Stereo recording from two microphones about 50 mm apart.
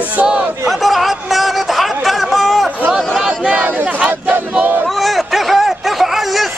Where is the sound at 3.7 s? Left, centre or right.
Right.